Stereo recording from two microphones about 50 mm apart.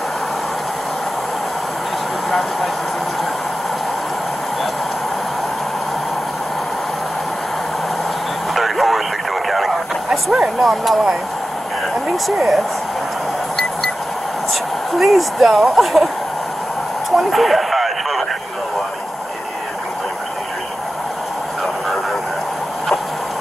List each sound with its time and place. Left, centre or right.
8.5 s radio: centre
9.5 s a sound: centre
10.0 s speech: centre
10.6 s speech: centre
14.5 s speech: centre
17.2 s a sound: centre